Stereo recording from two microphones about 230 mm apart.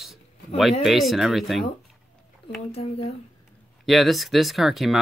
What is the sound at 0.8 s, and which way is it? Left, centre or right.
Speech, centre.